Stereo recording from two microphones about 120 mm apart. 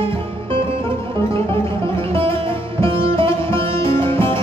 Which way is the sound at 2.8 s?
50° right (ahead or behind).